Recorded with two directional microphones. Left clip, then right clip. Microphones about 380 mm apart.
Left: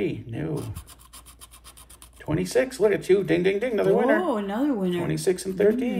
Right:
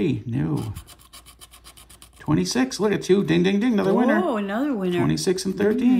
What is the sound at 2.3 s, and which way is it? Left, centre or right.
Speech, centre.